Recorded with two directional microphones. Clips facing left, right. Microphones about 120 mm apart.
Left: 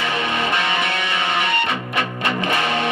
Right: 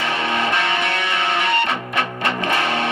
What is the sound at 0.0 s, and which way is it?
Music, 15° left (ahead or behind).